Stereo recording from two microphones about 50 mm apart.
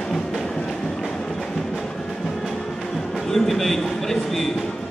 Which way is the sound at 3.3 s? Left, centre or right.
Centre.